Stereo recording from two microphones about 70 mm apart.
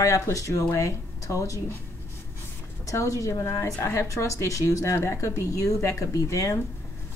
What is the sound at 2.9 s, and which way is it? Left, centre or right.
Speech, left.